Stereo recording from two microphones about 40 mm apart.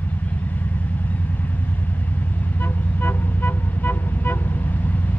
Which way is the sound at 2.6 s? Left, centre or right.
Left.